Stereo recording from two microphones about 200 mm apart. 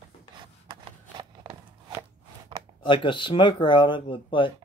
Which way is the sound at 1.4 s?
20° right (ahead or behind).